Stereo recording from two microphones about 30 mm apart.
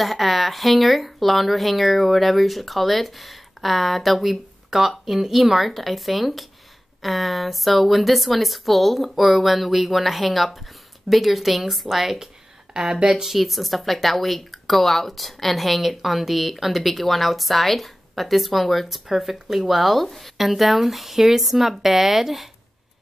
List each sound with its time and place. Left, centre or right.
0.0 s speech: centre
12.7 s speech: right
13.3 s speech: centre